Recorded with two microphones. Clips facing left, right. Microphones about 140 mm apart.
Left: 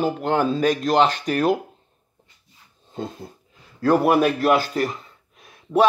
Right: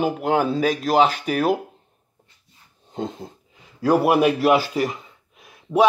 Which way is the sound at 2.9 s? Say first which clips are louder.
Right 2 dB; 20° right (ahead or behind).